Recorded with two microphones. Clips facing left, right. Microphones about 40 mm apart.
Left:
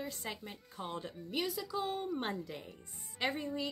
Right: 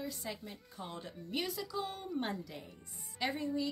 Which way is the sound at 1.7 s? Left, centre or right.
Left.